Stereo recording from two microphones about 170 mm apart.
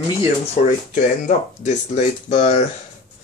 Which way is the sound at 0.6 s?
45° left (ahead or behind).